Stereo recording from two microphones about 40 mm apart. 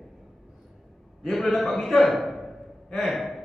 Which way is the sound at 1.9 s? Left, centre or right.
Centre.